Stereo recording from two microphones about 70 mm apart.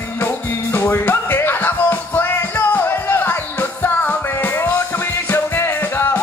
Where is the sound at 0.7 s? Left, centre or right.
Left.